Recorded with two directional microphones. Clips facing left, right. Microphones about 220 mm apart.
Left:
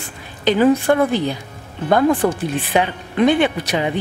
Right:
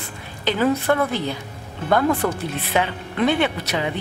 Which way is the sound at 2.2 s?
25° left (ahead or behind).